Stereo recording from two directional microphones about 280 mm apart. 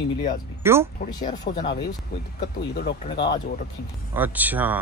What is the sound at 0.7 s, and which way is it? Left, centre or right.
Speech, centre.